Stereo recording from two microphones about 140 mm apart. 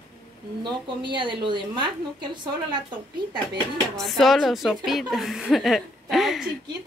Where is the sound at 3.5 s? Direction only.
5° left (ahead or behind).